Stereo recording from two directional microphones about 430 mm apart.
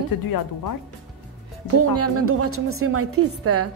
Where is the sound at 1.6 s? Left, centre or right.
Right.